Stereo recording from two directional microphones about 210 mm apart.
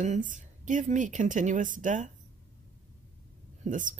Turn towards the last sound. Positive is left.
turn(degrees=-40)  # may be behind; listen again after turning